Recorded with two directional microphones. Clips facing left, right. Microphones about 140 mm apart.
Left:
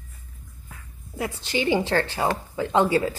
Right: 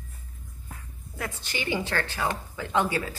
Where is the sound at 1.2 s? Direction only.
25° left (ahead or behind).